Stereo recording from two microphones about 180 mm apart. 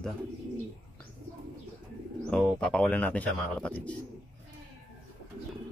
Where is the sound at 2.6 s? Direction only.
5° left (ahead or behind).